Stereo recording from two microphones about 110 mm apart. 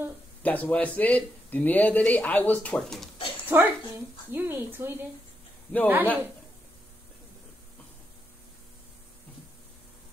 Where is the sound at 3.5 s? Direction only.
15° right (ahead or behind).